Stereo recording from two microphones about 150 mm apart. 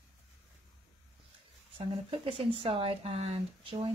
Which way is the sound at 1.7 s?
40° right (ahead or behind).